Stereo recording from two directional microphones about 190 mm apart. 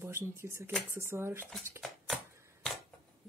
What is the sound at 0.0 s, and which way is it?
Speech, 15° right (ahead or behind).